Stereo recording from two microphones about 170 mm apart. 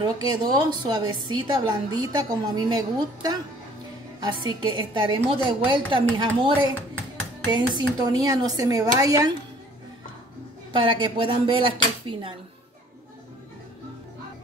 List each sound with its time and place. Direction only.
0.0 s a woman's voice: 25° right (ahead or behind)
7.5 s a woman's voice: 25° right (ahead or behind)
10.7 s speech: 30° right (ahead or behind)